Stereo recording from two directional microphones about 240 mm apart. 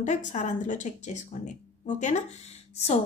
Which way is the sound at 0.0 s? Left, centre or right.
Left.